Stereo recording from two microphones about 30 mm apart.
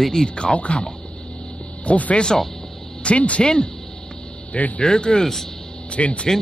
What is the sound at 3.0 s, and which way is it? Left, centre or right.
Speech, left.